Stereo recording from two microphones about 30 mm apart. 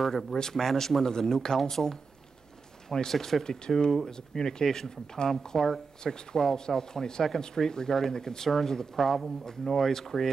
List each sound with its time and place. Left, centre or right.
0.3 s speech: centre
0.7 s speech: centre
3.1 s speech: centre
4.0 s speech: left
8.5 s speech: centre